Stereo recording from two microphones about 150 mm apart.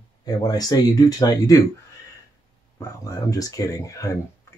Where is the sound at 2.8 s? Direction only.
25° left (ahead or behind).